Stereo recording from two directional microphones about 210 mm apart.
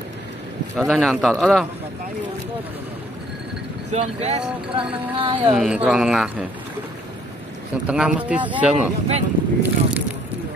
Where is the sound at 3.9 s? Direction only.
30° right (ahead or behind).